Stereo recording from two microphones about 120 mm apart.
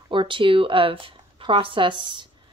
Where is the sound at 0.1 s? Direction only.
45° right (ahead or behind).